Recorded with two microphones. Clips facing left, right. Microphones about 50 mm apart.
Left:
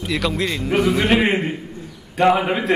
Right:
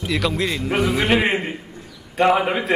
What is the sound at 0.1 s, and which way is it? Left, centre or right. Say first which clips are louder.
A man's voice: even; centre.